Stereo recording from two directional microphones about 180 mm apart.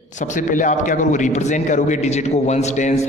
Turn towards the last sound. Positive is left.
turn(degrees=40)  # may be behind; listen again after turning